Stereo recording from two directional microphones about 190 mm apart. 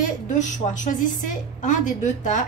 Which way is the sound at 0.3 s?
40° left (ahead or behind).